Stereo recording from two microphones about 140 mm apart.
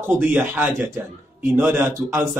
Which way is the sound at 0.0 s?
15° right (ahead or behind).